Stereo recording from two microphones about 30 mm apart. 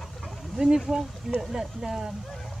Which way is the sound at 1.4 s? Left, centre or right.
Centre.